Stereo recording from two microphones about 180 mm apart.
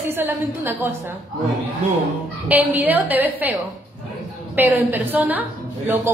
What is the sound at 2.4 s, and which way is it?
A woman's voice, 10° right (ahead or behind).